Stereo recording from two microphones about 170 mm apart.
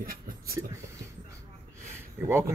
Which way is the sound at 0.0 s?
60° right (ahead or behind).